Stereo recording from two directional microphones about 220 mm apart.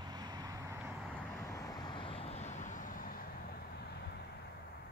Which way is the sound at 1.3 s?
15° left (ahead or behind).